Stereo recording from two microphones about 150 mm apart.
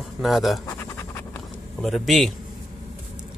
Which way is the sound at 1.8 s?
Centre (ahead or behind).